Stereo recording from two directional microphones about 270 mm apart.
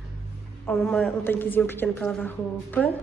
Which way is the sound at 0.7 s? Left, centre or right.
Centre.